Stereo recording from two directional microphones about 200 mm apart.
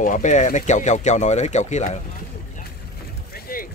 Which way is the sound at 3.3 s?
45° left (ahead or behind).